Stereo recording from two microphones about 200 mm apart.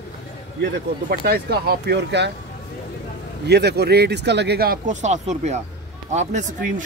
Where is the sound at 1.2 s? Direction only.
50° right (ahead or behind).